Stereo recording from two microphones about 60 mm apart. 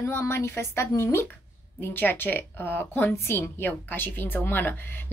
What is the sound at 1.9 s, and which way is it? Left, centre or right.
A woman's voice, left.